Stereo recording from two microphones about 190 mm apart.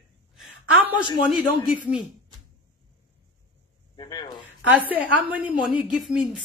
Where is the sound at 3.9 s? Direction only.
20° left (ahead or behind).